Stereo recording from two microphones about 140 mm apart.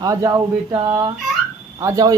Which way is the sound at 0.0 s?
25° right (ahead or behind).